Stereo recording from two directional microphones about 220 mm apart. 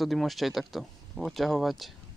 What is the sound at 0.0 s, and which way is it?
Speech, centre (ahead or behind).